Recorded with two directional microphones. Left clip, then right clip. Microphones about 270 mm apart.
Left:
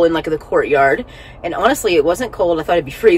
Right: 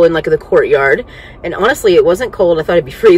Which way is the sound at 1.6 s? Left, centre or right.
Left.